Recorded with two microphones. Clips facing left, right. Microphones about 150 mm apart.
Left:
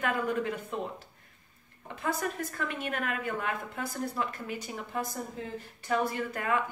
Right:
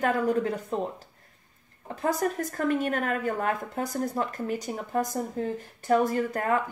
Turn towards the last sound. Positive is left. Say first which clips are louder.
# right 5 dB
turn(degrees=-40)  # may be behind; listen again after turning